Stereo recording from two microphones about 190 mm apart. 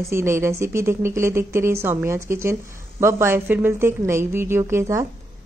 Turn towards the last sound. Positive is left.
turn(degrees=-15)  # may be behind; listen again after turning